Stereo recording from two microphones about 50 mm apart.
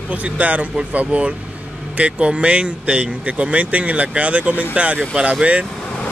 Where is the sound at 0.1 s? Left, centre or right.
Right.